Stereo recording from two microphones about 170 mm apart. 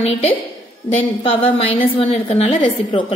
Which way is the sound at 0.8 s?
35° left (ahead or behind).